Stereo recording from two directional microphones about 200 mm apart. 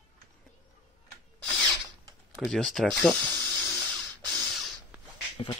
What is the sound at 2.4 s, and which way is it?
Speech, centre (ahead or behind).